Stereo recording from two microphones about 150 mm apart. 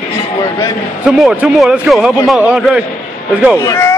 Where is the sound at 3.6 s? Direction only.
15° left (ahead or behind).